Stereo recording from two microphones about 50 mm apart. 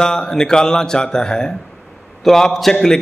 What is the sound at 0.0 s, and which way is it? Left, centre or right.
A man's voice, centre.